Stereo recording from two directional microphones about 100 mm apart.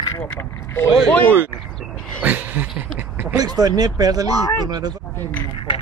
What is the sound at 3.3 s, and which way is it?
Speech, 40° right (ahead or behind).